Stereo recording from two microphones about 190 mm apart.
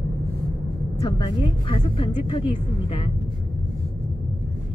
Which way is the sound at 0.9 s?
25° left (ahead or behind).